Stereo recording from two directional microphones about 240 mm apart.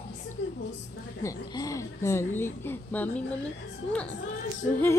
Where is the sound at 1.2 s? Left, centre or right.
Centre.